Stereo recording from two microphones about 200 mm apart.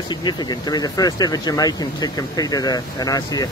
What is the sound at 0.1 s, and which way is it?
Speech, 20° left (ahead or behind).